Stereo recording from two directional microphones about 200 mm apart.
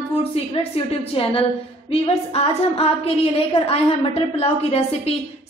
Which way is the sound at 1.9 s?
30° left (ahead or behind).